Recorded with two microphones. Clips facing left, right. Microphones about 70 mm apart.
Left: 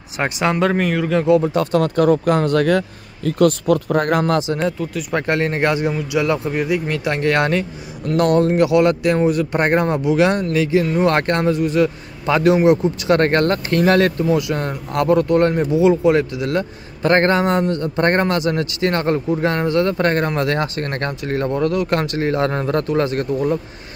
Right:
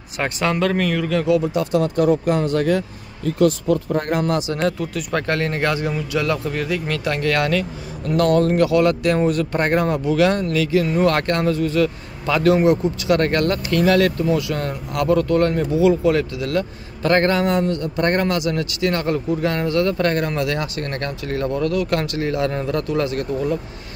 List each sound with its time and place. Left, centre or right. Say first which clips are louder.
0.2 s speech: left 2 dB; centre
1.4 s speech: left 2 dB; left
4.5 s speech: left 1 dB; left
9.2 s speech: left 2 dB; centre
9.6 s speech: left 2 dB; left
13.2 s speech: left 3 dB; left